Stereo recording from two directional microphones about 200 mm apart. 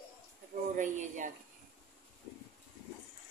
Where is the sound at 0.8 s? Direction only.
40° right (ahead or behind).